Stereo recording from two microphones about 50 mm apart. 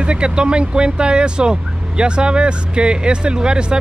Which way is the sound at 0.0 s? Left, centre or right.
Centre.